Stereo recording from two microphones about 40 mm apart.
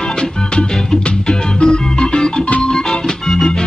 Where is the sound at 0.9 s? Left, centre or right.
Centre.